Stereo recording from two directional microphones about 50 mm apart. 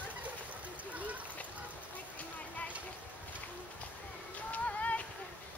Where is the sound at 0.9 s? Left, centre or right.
Right.